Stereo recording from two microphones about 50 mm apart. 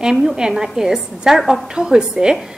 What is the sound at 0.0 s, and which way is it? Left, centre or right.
A woman's voice, centre.